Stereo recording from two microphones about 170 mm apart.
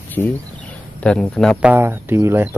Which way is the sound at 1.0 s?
5° left (ahead or behind).